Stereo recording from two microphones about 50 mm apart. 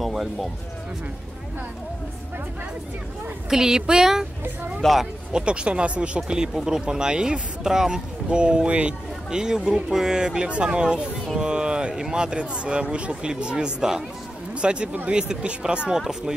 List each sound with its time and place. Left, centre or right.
0.0 s music: centre
3.4 s speech: centre
4.8 s speech: centre
5.3 s speech: right